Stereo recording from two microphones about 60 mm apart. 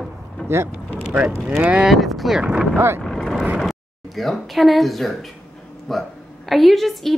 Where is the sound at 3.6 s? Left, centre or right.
Centre.